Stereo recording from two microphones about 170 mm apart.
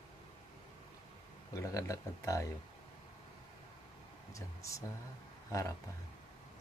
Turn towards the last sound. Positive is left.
turn(degrees=20)  # may be behind; listen again after turning